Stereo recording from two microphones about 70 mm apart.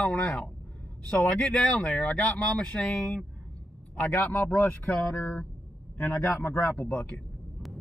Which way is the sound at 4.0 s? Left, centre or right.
Left.